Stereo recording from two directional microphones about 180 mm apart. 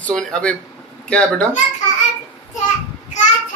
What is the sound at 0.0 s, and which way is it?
Speech, 5° left (ahead or behind).